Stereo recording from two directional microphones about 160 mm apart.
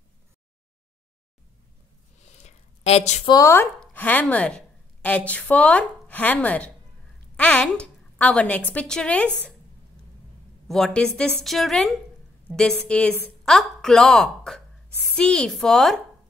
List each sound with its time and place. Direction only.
2.2 s a sound: 45° left (ahead or behind)
3.3 s a woman's voice: 20° left (ahead or behind)
10.7 s a woman's voice: 5° left (ahead or behind)